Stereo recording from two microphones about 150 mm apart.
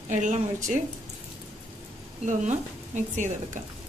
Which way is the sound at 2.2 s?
55° right (ahead or behind).